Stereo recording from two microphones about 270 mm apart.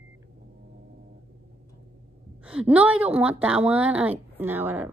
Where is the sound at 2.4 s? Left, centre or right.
Centre.